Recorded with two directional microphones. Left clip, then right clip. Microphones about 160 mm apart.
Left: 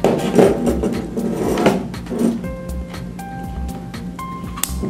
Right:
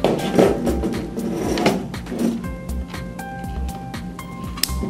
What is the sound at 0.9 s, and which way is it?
Drawer open or close, centre (ahead or behind).